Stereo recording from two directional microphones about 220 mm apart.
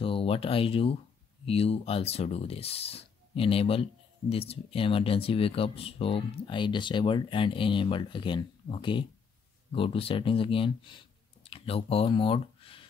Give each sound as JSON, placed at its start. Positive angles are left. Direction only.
{"t": 0.0, "sound": "speech", "side_deg": 25}